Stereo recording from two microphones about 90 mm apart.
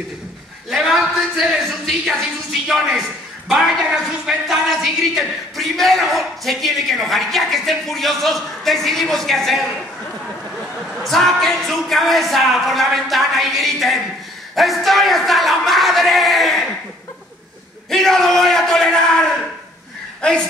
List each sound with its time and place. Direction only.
0.7 s speech: centre (ahead or behind)
11.0 s speech: 5° left (ahead or behind)
17.8 s a sound: 5° left (ahead or behind)
20.2 s speech: 10° left (ahead or behind)